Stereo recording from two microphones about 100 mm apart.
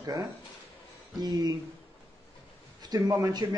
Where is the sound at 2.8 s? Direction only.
40° right (ahead or behind).